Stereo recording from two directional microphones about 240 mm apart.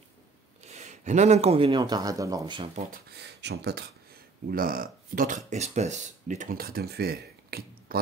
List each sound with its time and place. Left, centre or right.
0.7 s speech: right
2.9 s speech: right